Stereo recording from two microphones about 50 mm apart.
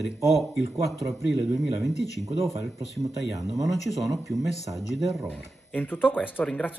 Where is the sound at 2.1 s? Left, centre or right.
Left.